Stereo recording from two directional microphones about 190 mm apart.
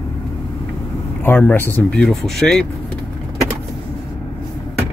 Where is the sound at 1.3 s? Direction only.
10° left (ahead or behind).